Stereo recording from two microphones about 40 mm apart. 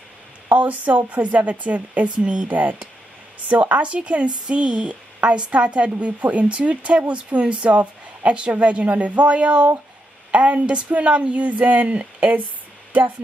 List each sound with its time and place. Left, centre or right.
0.5 s speech: right
2.5 s speech: right